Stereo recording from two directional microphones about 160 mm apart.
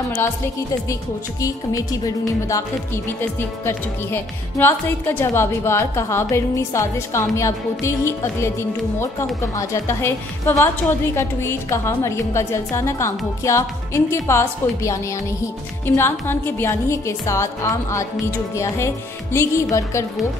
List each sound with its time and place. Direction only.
1.4 s speech: 20° left (ahead or behind)
3.2 s a woman's voice: 15° left (ahead or behind)
16.0 s a woman's voice: 15° left (ahead or behind)
19.3 s speech: 20° left (ahead or behind)